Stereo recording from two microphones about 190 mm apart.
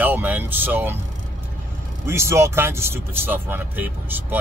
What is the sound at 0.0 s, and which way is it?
Speech, 10° right (ahead or behind).